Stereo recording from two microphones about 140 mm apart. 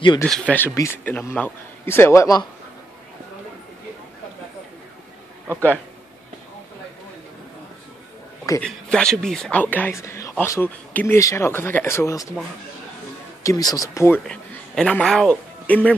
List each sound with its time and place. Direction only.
0.2 s speech: 10° left (ahead or behind)
8.6 s speech: 5° left (ahead or behind); by 12.3 s 20° left (ahead or behind)
13.4 s speech: 25° left (ahead or behind)
14.2 s a man's voice: 5° left (ahead or behind)